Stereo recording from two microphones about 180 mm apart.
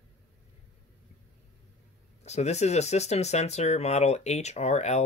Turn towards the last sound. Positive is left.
turn(degrees=40)  # may be behind; listen again after turning